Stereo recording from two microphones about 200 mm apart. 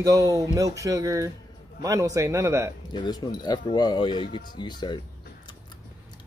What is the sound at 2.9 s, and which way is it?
Speech, 20° left (ahead or behind).